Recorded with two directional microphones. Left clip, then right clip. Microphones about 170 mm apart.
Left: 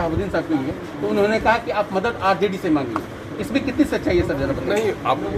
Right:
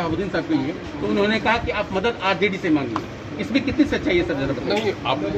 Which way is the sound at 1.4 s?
20° right (ahead or behind).